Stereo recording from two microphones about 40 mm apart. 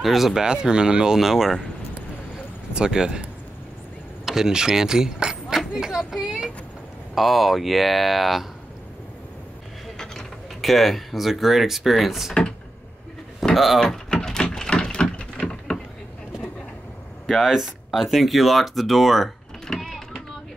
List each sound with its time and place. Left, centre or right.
0.0 s speech: centre
0.5 s speech: right
2.7 s speech: centre
4.3 s speech: centre
7.2 s speech: centre
9.9 s speech: centre
13.4 s a sound: centre
14.2 s a sound: centre
17.5 s speech: centre